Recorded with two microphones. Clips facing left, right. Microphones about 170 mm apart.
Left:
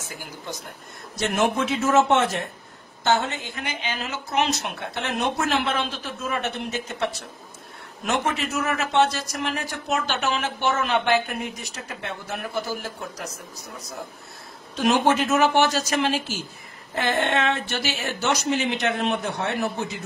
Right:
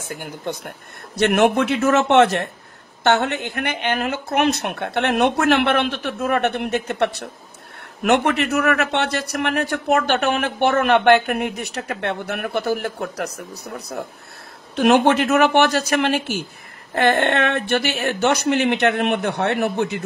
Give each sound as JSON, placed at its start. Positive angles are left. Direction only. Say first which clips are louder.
{"t": 0.0, "sound": "a man's voice", "louder": "right 8 dB", "side_deg": -55}